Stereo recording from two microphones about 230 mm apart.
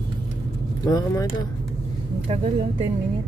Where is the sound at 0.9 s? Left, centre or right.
Centre.